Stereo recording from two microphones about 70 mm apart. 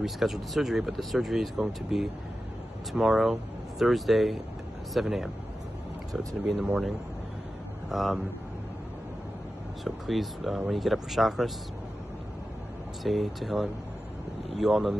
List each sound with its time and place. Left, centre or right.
0.0 s speech: centre
7.9 s speech: centre
9.8 s speech: centre
13.0 s speech: centre